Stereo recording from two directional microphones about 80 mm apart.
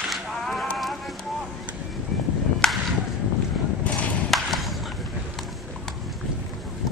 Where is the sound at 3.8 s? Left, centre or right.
Centre.